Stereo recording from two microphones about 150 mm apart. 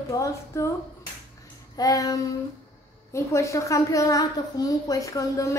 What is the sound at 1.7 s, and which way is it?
A woman's voice, 25° left (ahead or behind).